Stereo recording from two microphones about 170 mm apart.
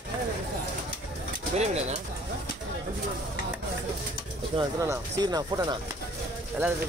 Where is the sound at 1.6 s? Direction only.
40° right (ahead or behind).